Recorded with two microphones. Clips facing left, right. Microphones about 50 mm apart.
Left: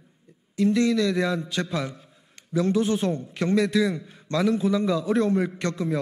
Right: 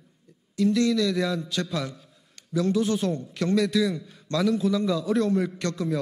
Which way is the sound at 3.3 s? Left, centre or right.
Left.